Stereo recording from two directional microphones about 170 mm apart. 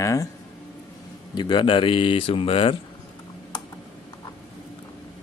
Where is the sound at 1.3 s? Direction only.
25° left (ahead or behind).